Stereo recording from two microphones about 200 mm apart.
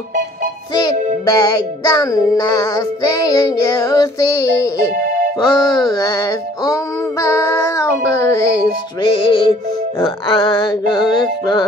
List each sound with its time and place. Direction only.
0.8 s music: 20° left (ahead or behind)